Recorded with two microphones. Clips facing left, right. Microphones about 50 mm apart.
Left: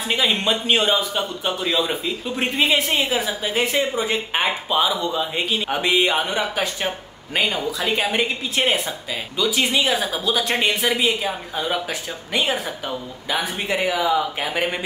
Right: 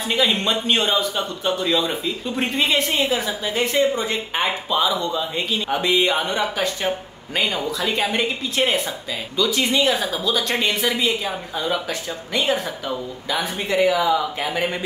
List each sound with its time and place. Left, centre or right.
0.1 s a man's voice: centre